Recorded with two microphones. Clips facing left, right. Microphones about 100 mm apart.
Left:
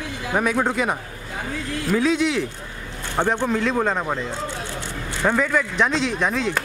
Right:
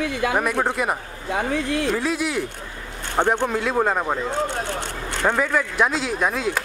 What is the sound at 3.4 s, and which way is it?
Speech, 5° right (ahead or behind).